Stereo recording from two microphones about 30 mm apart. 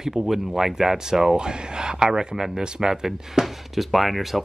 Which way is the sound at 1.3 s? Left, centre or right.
Right.